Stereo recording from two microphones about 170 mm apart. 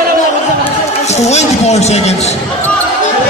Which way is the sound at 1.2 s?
40° left (ahead or behind).